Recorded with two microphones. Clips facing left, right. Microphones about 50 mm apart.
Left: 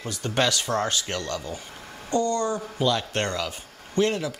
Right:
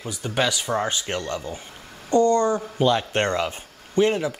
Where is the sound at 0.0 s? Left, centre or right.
Centre.